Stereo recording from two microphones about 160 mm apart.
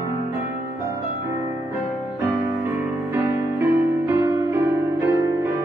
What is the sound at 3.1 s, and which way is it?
Music, 10° right (ahead or behind).